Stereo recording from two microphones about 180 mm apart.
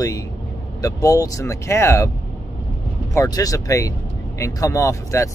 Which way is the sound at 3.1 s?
20° left (ahead or behind).